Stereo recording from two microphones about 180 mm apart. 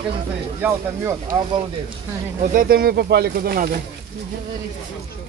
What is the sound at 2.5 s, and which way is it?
Speech, 55° right (ahead or behind).